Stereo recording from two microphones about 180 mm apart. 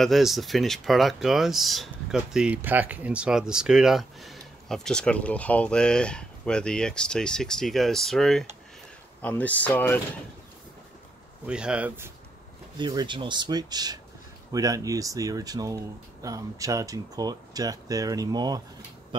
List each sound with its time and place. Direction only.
0.0 s speech: centre (ahead or behind)
11.4 s speech: 5° right (ahead or behind)
12.7 s speech: 25° right (ahead or behind)